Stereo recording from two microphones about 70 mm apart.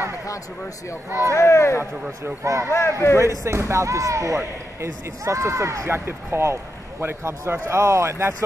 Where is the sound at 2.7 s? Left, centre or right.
Left.